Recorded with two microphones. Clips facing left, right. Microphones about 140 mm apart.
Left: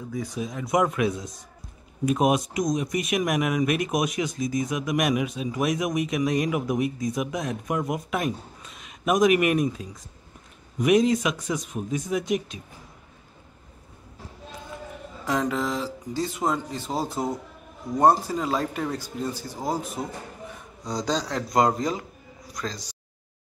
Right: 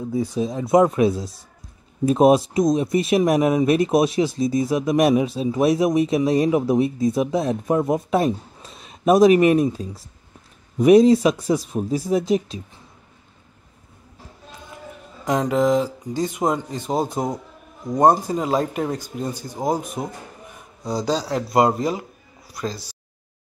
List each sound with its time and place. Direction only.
0.1 s speech: 30° right (ahead or behind)
15.2 s speech: 20° right (ahead or behind)
20.8 s speech: 5° right (ahead or behind)